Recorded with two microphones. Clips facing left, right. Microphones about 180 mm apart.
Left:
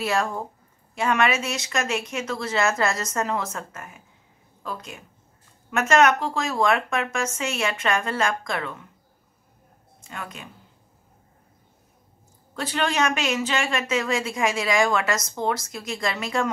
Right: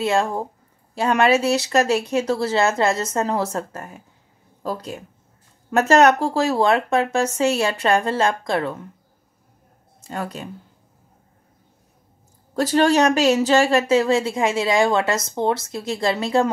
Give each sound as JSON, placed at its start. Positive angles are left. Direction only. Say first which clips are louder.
{"t": 0.0, "sound": "speech", "louder": "right 5 dB", "side_deg": -25}
{"t": 10.0, "sound": "speech", "louder": "right 8 dB", "side_deg": -35}
{"t": 12.5, "sound": "speech", "louder": "right 8 dB", "side_deg": -40}